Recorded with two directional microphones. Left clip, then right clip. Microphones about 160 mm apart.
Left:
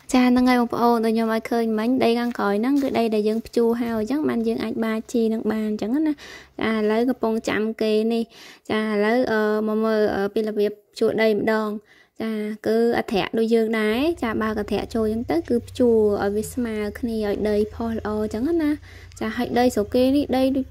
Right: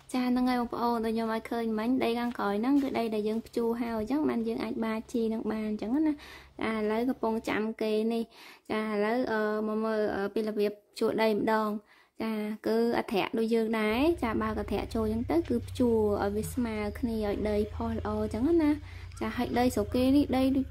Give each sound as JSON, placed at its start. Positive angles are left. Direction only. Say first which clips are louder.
{"t": 0.1, "sound": "speech", "louder": "left 11 dB", "side_deg": 55}